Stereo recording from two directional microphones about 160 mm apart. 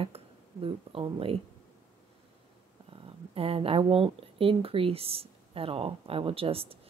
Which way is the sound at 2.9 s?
35° right (ahead or behind).